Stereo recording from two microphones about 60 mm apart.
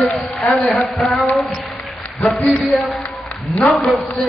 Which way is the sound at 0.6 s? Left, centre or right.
Centre.